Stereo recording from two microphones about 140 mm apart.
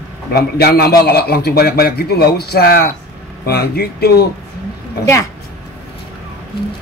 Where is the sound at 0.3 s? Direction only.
90° left.